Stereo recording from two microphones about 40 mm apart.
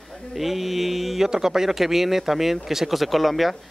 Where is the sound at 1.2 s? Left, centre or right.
Centre.